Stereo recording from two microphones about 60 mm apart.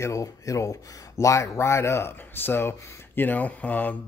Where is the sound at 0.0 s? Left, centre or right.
Left.